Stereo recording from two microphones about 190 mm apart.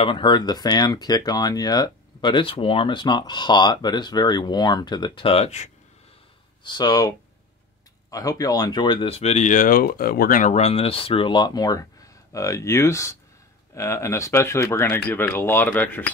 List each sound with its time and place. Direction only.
0.0 s speech: 25° left (ahead or behind)
6.6 s speech: 25° left (ahead or behind)